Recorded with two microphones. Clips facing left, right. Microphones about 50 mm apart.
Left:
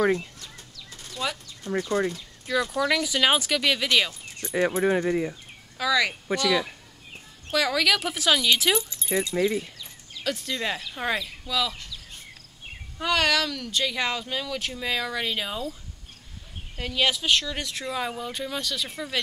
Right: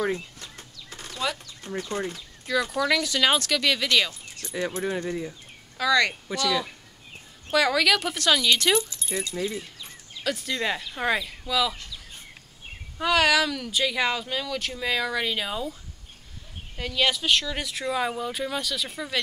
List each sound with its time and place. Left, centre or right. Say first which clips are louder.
0.6 s a sound: right 2 dB; right
1.7 s speech: left 5 dB; left
2.4 s speech: even; centre
4.4 s speech: left 5 dB; left
5.8 s speech: right 2 dB; centre
9.0 s speech: left 5 dB; left
10.2 s speech: right 1 dB; centre
13.0 s speech: right 2 dB; centre
16.7 s speech: even; centre